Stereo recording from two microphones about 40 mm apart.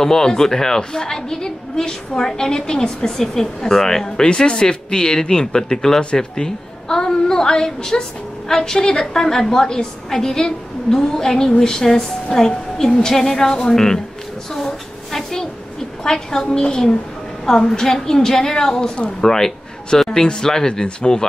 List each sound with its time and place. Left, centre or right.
0.0 s a woman's voice: centre
14.5 s a sound: centre
16.0 s a woman's voice: centre